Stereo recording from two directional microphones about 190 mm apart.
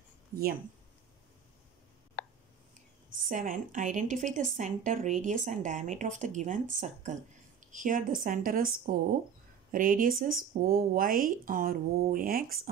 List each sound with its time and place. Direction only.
3.3 s a woman's voice: 45° right (ahead or behind)